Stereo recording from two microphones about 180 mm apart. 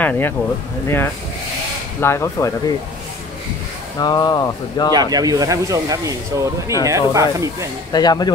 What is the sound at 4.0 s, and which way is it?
Speech, 20° left (ahead or behind).